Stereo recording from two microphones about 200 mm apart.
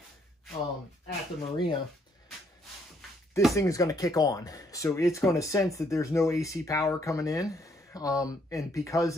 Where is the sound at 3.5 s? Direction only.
15° left (ahead or behind).